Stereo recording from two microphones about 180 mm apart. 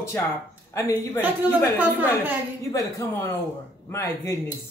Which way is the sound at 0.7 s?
15° left (ahead or behind).